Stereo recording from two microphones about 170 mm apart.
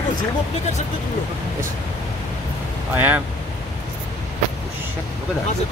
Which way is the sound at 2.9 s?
10° right (ahead or behind).